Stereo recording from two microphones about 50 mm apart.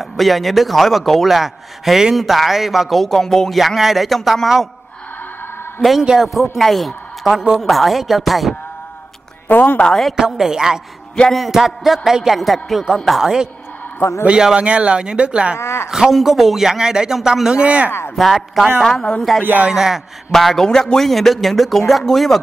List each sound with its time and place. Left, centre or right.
0.0 s a man's voice: centre
3.5 s a man's voice: centre
5.8 s a man's voice: centre
9.5 s a woman's voice: left
10.1 s a man's voice: centre
11.2 s a man's voice: centre
13.2 s a man's voice: centre
15.5 s speech: left
15.9 s a man's voice: centre
17.6 s a man's voice: right
18.1 s a man's voice: centre
19.7 s a man's voice: centre
20.2 s a man's voice: centre